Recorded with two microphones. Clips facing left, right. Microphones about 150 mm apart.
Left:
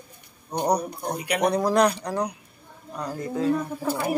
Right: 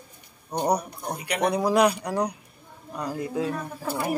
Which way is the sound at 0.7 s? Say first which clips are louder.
Left 3 dB; 15° left (ahead or behind).